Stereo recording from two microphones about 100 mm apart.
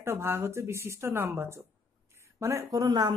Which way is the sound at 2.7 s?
40° right (ahead or behind).